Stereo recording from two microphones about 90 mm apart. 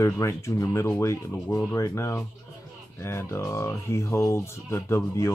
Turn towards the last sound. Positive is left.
turn(degrees=30)  # may be behind; listen again after turning